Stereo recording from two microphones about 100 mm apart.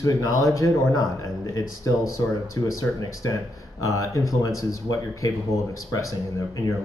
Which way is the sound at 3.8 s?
30° left (ahead or behind).